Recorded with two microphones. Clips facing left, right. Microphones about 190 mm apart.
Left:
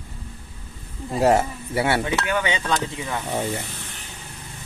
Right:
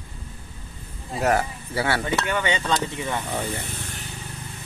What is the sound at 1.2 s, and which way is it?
Speech, 25° left (ahead or behind).